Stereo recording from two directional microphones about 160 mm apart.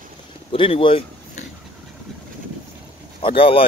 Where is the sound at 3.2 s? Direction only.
35° left (ahead or behind).